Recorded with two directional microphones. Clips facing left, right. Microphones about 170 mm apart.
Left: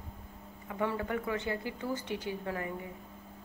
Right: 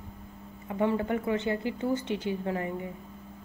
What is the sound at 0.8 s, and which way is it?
A woman's voice, 25° right (ahead or behind).